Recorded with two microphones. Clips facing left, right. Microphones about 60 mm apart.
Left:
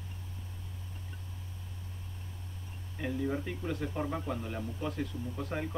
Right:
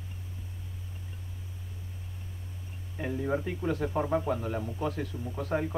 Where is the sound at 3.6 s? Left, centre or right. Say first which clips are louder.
Right 5 dB; right.